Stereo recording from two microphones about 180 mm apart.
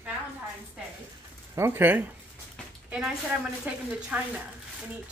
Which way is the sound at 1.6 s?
10° right (ahead or behind).